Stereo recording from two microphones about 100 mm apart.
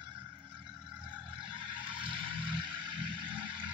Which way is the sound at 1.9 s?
60° right (ahead or behind).